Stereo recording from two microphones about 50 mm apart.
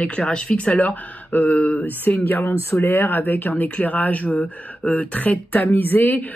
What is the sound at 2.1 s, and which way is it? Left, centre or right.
A man's voice, left.